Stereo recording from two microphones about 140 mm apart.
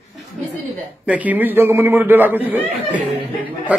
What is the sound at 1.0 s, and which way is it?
A man's voice, 10° right (ahead or behind).